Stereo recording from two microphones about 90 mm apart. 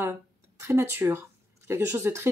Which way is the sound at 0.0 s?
30° right (ahead or behind).